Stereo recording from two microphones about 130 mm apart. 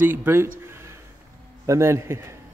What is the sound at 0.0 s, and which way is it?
Speech, 15° right (ahead or behind).